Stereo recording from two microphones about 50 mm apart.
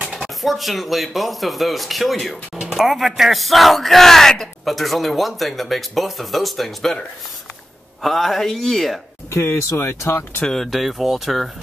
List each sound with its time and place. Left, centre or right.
0.4 s speech: centre
8.0 s speech: centre
9.3 s speech: left
10.4 s speech: centre